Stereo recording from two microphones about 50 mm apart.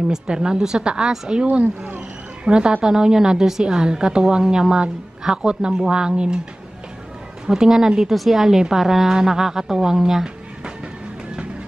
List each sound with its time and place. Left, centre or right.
0.1 s a woman's voice: centre
7.4 s a woman's voice: centre